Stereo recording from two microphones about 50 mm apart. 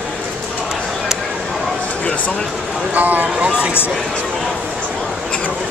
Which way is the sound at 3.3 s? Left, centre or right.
Right.